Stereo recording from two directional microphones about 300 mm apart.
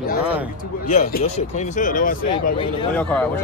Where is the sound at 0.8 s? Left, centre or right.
Left.